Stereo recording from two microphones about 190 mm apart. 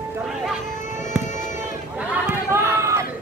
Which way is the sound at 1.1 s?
5° right (ahead or behind).